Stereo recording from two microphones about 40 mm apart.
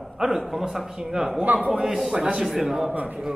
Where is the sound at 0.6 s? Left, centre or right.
Centre.